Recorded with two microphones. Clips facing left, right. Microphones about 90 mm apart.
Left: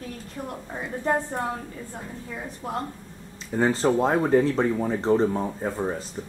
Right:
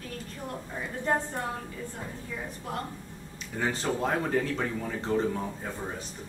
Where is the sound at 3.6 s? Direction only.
30° left (ahead or behind).